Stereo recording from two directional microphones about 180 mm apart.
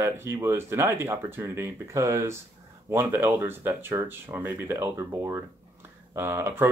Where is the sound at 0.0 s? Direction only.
15° right (ahead or behind).